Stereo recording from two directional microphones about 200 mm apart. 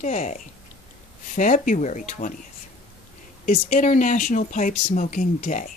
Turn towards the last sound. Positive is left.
turn(degrees=40)  # may be behind; listen again after turning